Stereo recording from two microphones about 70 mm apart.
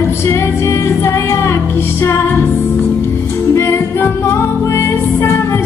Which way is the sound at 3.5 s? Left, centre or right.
Left.